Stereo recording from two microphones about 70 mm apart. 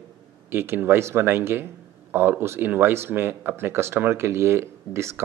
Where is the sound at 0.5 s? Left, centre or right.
Right.